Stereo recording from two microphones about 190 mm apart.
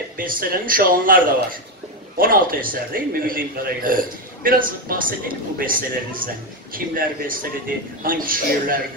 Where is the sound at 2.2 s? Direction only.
50° right (ahead or behind).